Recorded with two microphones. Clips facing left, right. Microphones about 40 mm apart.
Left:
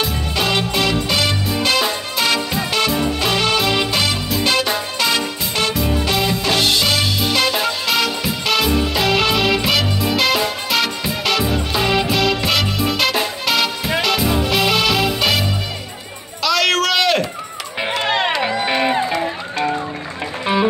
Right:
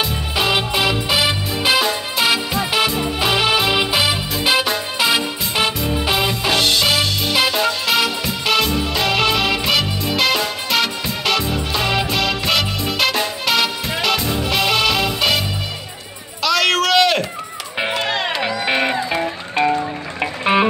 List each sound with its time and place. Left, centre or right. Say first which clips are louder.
0.0 s music: even; centre
16.4 s a sound: even; centre
18.0 s music: left 3 dB; left
18.7 s music: right 1 dB; centre